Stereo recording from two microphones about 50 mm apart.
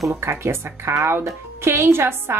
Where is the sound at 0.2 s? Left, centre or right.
Right.